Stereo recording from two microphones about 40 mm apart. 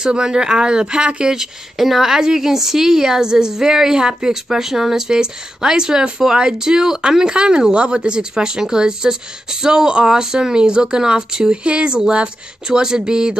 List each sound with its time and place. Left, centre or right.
0.0 s speech: centre
1.8 s a woman's voice: centre